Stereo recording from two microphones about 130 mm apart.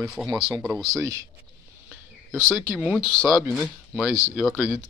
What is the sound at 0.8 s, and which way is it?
Speech, 25° right (ahead or behind).